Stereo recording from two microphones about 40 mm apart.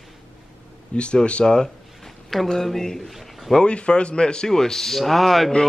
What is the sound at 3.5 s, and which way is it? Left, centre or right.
A man's voice, left.